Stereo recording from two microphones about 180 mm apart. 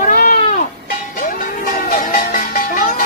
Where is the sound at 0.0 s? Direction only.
50° left (ahead or behind).